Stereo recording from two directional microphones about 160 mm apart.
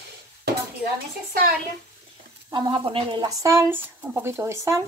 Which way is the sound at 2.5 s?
30° right (ahead or behind).